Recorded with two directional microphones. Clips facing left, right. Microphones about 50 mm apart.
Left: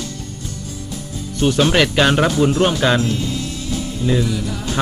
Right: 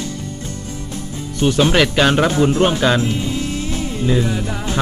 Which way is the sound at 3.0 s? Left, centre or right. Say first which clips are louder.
Right 1 dB; right.